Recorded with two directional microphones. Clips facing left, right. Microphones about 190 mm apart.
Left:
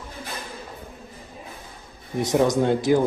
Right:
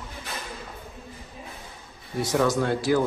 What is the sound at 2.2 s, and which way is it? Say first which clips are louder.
Speech: left 3 dB; 20° left (ahead or behind).